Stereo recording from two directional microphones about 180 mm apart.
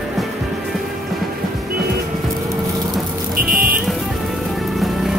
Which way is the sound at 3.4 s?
50° right (ahead or behind).